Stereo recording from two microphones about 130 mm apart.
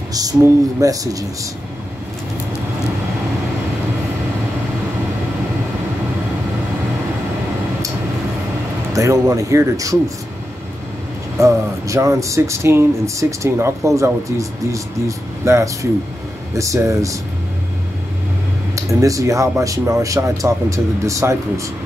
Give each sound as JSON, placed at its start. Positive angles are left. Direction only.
{"t": 0.1, "sound": "speech", "side_deg": -30}
{"t": 8.9, "sound": "speech", "side_deg": -25}
{"t": 11.3, "sound": "speech", "side_deg": -25}
{"t": 18.8, "sound": "speech", "side_deg": -25}